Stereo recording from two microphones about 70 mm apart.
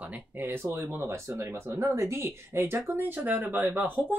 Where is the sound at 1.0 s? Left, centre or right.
Right.